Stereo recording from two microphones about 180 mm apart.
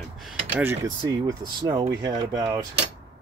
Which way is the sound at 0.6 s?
15° right (ahead or behind).